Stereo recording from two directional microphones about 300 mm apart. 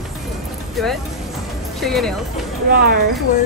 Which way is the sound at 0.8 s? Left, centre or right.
Centre.